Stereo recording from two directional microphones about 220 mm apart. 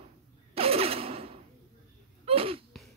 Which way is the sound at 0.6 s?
25° right (ahead or behind).